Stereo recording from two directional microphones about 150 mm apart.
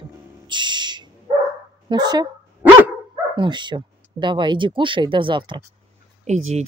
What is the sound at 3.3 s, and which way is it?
Speech, 30° right (ahead or behind).